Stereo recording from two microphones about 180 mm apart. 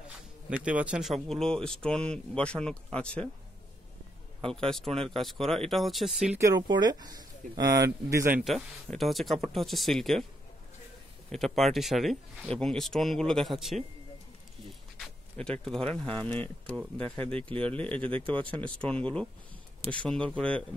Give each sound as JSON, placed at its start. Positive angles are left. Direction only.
{"t": 0.5, "sound": "speech", "side_deg": -5}
{"t": 4.5, "sound": "speech", "side_deg": 5}
{"t": 6.3, "sound": "speech", "side_deg": -20}
{"t": 8.5, "sound": "speech", "side_deg": 0}
{"t": 11.3, "sound": "speech", "side_deg": 0}
{"t": 15.0, "sound": "a sound", "side_deg": 5}
{"t": 15.9, "sound": "speech", "side_deg": 5}